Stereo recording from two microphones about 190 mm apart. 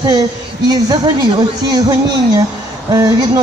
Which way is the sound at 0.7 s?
20° right (ahead or behind).